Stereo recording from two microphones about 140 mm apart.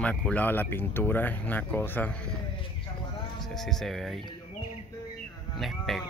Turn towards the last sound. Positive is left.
turn(degrees=0)  # may be behind; listen again after turning